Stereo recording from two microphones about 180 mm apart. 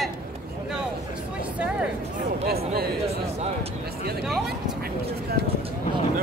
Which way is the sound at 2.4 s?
60° right (ahead or behind).